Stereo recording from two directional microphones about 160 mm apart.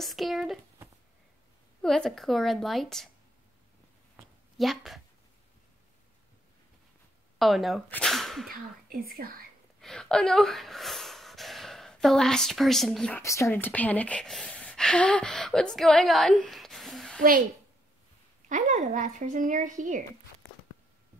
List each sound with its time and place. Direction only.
0.0 s a woman's voice: centre (ahead or behind)
1.8 s a woman's voice: 5° left (ahead or behind)
4.6 s a woman's voice: centre (ahead or behind)
7.3 s speech: centre (ahead or behind)
8.5 s speech: 65° right (ahead or behind)
9.8 s speech: 5° left (ahead or behind)
13.2 s speech: 20° left (ahead or behind); by 17.2 s centre (ahead or behind)
18.5 s speech: 50° right (ahead or behind)